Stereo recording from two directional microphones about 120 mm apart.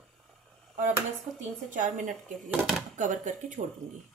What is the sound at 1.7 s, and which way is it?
Speech, 90° right.